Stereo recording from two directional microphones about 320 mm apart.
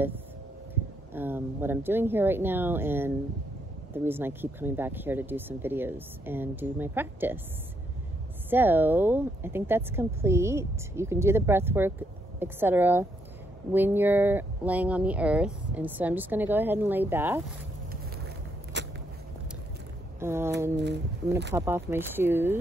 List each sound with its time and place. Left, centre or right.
1.1 s speech: centre
8.5 s speech: centre
18.7 s biting: right
20.2 s a sound: centre
20.7 s speech: right
21.5 s speech: centre